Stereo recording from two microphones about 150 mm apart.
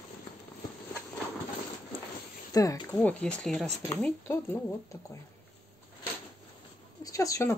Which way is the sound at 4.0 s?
15° left (ahead or behind).